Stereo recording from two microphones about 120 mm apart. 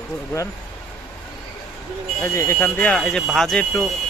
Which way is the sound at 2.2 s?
25° left (ahead or behind).